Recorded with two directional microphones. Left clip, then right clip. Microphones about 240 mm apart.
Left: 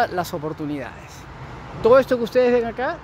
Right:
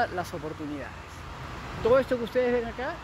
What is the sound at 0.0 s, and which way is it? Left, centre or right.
Speech, left.